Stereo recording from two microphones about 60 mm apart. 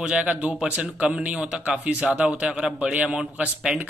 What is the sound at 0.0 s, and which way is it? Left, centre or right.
Speech, centre.